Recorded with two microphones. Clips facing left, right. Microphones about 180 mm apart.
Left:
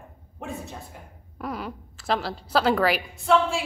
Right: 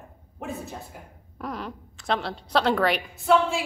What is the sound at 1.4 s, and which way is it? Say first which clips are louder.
Speech: left 1 dB; 5° left (ahead or behind).